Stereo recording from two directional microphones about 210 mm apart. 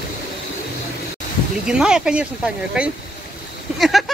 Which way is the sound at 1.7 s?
5° right (ahead or behind).